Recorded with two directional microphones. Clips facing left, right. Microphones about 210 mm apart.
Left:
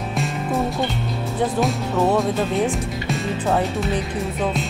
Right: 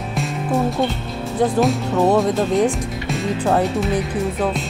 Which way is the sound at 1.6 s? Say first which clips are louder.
Right 3 dB; centre (ahead or behind).